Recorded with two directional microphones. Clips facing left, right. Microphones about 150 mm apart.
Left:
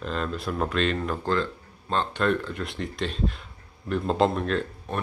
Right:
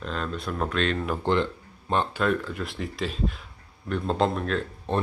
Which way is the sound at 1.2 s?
20° right (ahead or behind).